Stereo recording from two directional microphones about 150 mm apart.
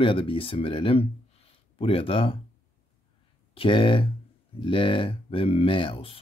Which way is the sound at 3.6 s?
35° left (ahead or behind).